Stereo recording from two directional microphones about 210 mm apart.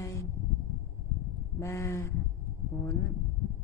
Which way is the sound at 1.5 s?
15° left (ahead or behind).